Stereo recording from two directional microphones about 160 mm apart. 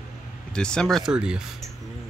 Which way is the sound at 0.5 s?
5° left (ahead or behind).